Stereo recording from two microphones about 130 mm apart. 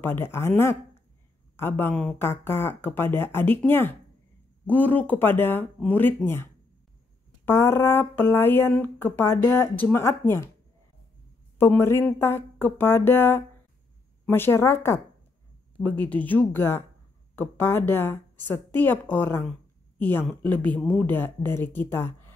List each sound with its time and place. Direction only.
0.0 s speech: 15° left (ahead or behind)
7.4 s speech: 20° left (ahead or behind)
11.5 s speech: 20° left (ahead or behind)